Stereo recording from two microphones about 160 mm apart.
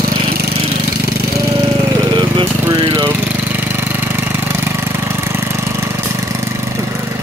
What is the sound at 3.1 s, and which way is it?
Engine, 10° right (ahead or behind).